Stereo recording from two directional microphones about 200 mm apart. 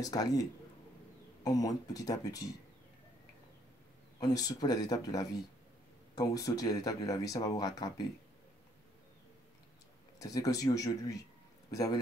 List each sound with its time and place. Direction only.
0.0 s speech: 20° left (ahead or behind)
4.2 s speech: 20° left (ahead or behind)
10.1 s speech: 20° left (ahead or behind)